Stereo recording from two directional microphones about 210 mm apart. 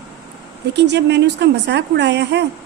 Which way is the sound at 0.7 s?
55° right (ahead or behind).